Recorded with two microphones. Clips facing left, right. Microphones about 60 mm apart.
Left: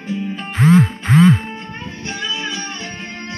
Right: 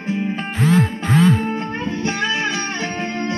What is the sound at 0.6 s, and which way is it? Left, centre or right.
Music, left.